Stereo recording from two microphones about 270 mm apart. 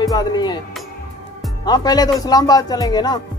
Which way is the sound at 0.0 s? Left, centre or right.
Centre.